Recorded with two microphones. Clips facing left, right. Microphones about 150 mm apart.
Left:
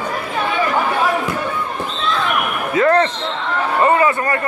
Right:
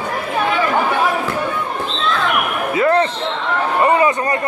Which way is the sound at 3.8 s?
20° right (ahead or behind).